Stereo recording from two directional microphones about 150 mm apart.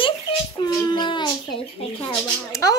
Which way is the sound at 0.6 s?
30° left (ahead or behind).